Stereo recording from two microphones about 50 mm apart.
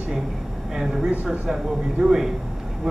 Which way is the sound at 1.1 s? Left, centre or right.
Right.